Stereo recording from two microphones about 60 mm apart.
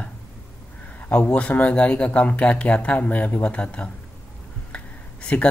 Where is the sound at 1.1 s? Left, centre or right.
Left.